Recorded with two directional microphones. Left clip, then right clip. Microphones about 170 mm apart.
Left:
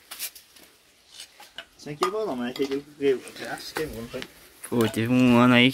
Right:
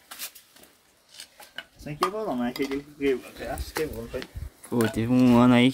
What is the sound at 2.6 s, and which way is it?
Stir, 75° right (ahead or behind).